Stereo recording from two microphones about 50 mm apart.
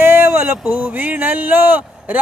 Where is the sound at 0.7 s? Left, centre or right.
Right.